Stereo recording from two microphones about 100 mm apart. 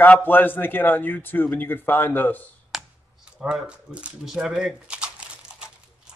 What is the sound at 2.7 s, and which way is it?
Computer keyboard, 5° right (ahead or behind).